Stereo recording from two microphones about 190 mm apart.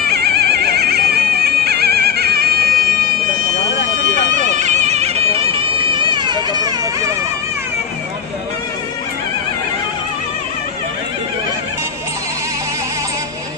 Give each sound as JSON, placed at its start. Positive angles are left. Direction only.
{"t": 0.0, "sound": "music", "side_deg": -55}
{"t": 3.7, "sound": "bagpipes", "side_deg": 65}
{"t": 4.1, "sound": "bagpipes", "side_deg": -40}